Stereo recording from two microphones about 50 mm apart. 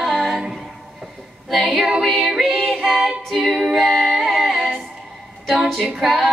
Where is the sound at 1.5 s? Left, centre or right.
Centre.